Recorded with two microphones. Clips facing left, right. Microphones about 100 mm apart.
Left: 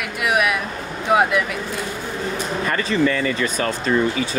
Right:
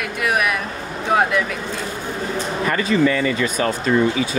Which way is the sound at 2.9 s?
40° left (ahead or behind).